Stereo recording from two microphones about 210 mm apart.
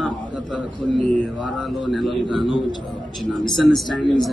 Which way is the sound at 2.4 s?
20° left (ahead or behind).